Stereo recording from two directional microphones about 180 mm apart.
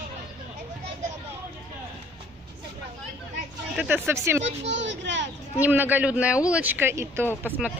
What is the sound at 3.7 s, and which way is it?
Speech, 10° right (ahead or behind).